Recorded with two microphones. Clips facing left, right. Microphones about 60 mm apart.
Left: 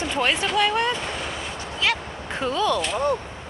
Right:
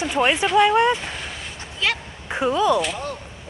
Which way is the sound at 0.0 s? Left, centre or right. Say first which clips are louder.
Right 3 dB; centre.